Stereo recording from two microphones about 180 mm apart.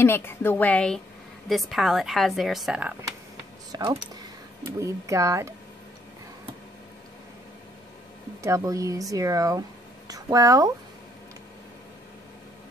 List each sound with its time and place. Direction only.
0.0 s a woman's voice: 15° left (ahead or behind); by 3.1 s 10° right (ahead or behind)
3.7 s speech: 25° right (ahead or behind)
8.4 s speech: 15° right (ahead or behind)